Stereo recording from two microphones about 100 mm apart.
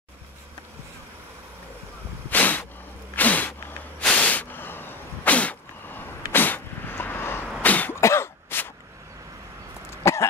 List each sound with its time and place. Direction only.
2.2 s a sound: 15° left (ahead or behind)
4.0 s sneeze: 15° left (ahead or behind)
7.6 s cough: 15° left (ahead or behind)
8.0 s cough: 25° left (ahead or behind)
9.8 s cough: 25° left (ahead or behind)